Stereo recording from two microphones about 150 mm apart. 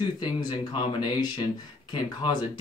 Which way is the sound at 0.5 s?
30° left (ahead or behind).